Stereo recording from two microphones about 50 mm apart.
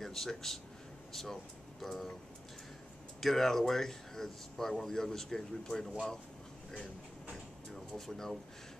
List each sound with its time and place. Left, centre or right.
0.0 s speech: centre
3.2 s speech: centre
7.7 s speech: centre